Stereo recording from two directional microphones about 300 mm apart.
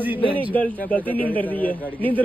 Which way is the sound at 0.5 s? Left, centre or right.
Centre.